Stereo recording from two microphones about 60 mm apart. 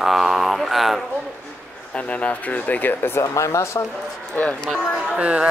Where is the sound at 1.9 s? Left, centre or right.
Left.